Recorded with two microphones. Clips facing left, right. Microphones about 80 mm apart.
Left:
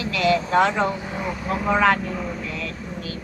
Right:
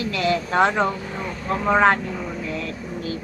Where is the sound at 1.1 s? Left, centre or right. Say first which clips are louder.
Even; centre.